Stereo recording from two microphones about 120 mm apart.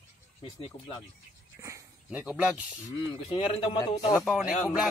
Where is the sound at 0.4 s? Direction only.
50° left (ahead or behind).